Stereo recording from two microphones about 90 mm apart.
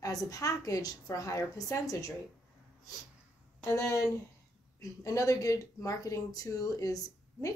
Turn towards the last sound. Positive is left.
turn(degrees=40)  # may be behind; listen again after turning